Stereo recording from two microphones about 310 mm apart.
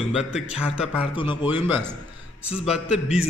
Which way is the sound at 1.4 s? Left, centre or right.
Centre.